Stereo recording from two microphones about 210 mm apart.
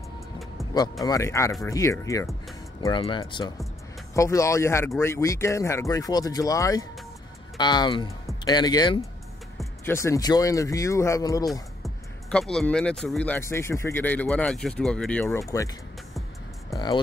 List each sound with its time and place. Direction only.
1.0 s speech: 15° left (ahead or behind)
11.8 s speech: 5° left (ahead or behind)
16.7 s speech: 20° left (ahead or behind)